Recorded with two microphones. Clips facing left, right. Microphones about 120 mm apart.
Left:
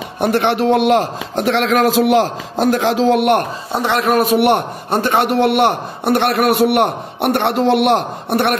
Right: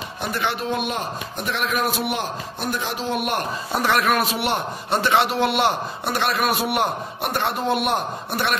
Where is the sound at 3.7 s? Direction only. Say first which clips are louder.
Left 3 dB; 25° left (ahead or behind).